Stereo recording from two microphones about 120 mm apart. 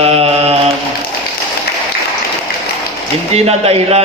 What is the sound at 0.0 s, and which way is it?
Mantra, 55° right (ahead or behind).